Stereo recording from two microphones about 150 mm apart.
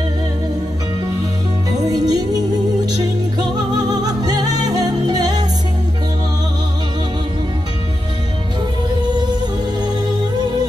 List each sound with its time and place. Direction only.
1.9 s music: 25° right (ahead or behind)
3.3 s music: 25° right (ahead or behind)